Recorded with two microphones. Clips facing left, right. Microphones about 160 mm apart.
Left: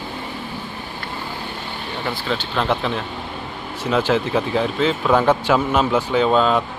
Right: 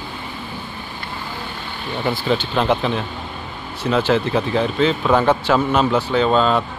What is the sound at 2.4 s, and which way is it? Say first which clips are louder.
Speech: right 3 dB; 5° right (ahead or behind).